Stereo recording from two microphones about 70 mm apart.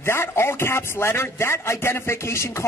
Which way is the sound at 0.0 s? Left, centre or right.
Left.